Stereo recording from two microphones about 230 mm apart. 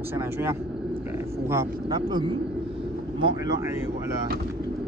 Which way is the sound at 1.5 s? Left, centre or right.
Centre.